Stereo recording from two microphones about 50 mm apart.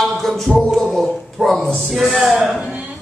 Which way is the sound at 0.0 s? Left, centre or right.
Centre.